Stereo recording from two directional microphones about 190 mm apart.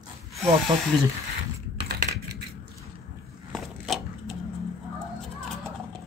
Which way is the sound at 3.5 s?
Centre (ahead or behind).